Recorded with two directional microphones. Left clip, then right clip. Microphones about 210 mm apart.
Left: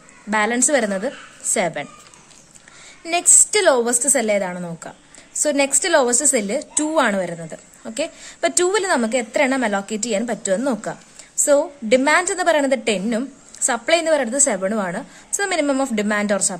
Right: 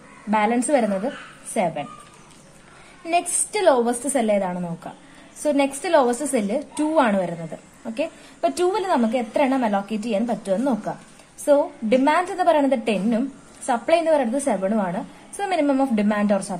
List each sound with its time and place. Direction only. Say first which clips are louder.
0.3 s a woman's voice: left 1 dB; 25° left (ahead or behind)
3.1 s a woman's voice: left 5 dB; 30° left (ahead or behind)